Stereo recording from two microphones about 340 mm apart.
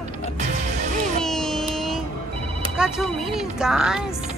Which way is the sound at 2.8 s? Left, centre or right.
Centre.